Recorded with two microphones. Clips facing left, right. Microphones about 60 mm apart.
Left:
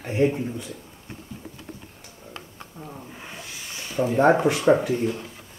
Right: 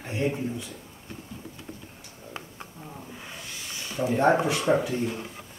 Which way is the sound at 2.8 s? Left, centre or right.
Centre.